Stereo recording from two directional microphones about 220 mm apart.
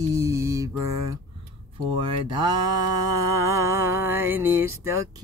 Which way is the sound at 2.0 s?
20° right (ahead or behind).